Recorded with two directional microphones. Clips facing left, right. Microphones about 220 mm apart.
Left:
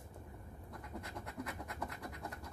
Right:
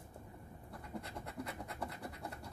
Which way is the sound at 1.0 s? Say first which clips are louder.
Even; 30° right (ahead or behind).